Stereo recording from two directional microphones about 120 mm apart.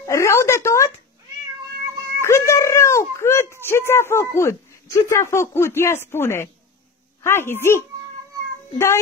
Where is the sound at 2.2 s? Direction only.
25° left (ahead or behind).